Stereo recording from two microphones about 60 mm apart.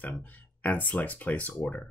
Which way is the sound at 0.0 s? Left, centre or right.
Left.